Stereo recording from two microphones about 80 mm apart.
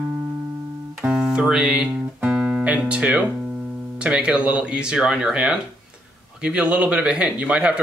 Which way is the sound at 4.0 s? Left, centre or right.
Centre.